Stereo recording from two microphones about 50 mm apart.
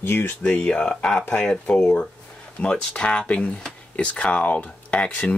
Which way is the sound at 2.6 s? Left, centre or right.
Centre.